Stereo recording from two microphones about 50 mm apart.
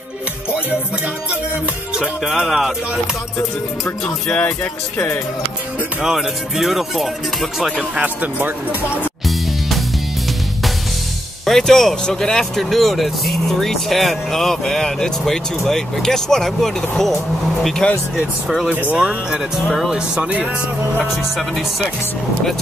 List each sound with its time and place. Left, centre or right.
2.0 s music: centre
4.3 s music: left
6.0 s speech: centre
8.2 s speech: right
11.4 s speech: centre
18.7 s speech: right
18.9 s music: centre
21.0 s speech: centre